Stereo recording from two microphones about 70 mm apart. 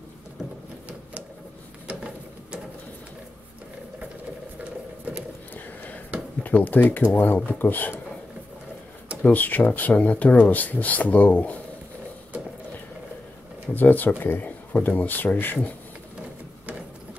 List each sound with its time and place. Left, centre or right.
4.6 s a sound: centre
6.4 s speech: left
9.2 s speech: left
13.7 s speech: left